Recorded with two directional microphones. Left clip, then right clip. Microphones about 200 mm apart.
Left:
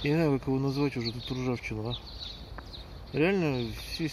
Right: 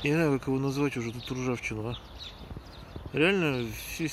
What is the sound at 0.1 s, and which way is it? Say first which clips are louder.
Speech: even; 20° right (ahead or behind).